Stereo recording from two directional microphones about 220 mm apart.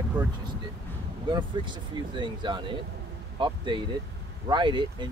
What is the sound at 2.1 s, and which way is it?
Speech, 20° right (ahead or behind).